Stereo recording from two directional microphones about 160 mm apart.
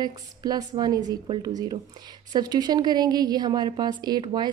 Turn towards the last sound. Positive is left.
turn(degrees=-25)  # may be behind; listen again after turning